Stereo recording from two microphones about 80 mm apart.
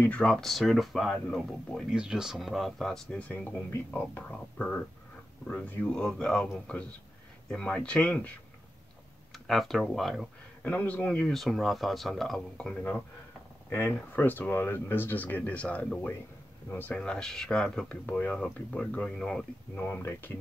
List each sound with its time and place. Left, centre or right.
0.0 s speech: centre
0.4 s speech: centre
1.9 s speech: centre
9.3 s speech: centre
10.6 s speech: centre
11.3 s speech: centre
13.7 s speech: left; by 17.9 s centre
18.0 s speech: centre
20.0 s speech: left